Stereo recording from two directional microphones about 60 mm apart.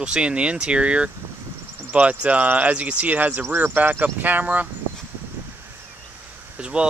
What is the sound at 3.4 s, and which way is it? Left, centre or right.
Speech, right.